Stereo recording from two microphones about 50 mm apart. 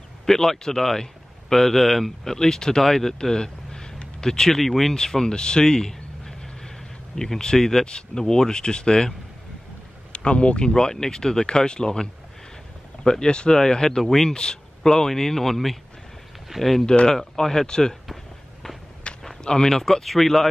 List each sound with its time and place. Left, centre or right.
0.3 s speech: centre
10.1 s speech: left; by 14.3 s centre
14.3 s speech: centre
16.8 s speech: centre
17.1 s speech: centre
19.2 s speech: centre